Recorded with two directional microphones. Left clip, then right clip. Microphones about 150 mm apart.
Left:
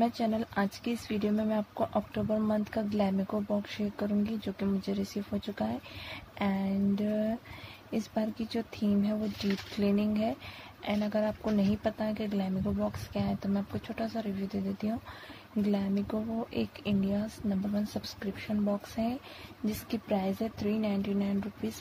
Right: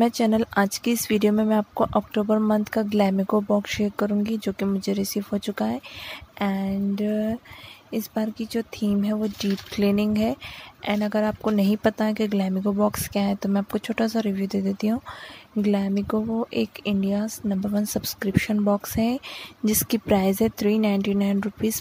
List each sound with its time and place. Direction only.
0.0 s speech: 45° right (ahead or behind)